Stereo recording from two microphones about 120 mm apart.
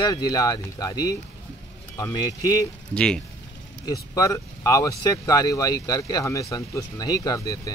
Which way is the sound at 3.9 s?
30° left (ahead or behind).